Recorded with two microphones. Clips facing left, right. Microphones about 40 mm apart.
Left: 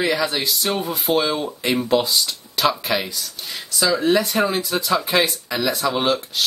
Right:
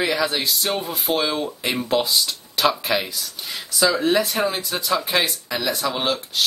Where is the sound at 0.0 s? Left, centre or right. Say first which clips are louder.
Left 1 dB; centre.